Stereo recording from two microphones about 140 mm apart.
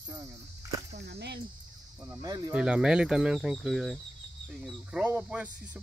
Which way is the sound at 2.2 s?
30° right (ahead or behind).